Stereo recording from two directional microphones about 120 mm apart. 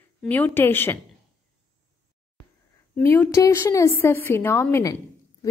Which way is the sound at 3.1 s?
20° left (ahead or behind).